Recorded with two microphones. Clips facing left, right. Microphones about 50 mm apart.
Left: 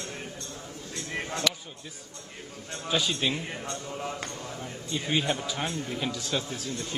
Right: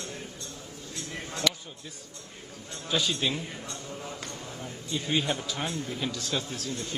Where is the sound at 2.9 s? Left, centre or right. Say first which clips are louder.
Left 1 dB; centre.